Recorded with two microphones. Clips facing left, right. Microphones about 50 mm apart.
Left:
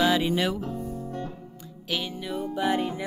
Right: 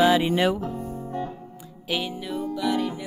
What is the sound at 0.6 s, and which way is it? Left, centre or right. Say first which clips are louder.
Music: right 1 dB; right.